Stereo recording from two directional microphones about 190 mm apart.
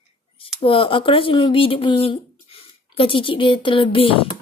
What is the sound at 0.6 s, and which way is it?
Speech, 30° left (ahead or behind).